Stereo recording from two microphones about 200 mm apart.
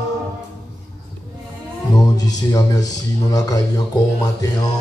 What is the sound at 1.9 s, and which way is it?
Music, 20° left (ahead or behind).